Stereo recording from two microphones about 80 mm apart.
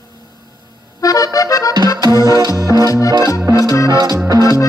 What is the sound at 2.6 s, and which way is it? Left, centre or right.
Music, right.